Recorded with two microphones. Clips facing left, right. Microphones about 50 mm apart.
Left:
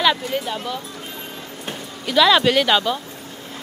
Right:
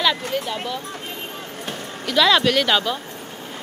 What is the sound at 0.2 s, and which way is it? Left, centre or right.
Speech, right.